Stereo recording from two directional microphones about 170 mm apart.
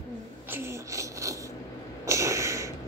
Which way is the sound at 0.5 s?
15° right (ahead or behind).